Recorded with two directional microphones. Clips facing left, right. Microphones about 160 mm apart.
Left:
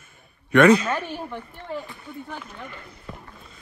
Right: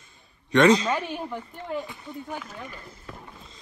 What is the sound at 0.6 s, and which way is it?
Speech, 30° right (ahead or behind).